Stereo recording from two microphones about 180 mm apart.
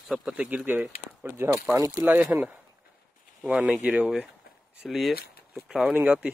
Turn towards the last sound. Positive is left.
turn(degrees=-5)  # may be behind; listen again after turning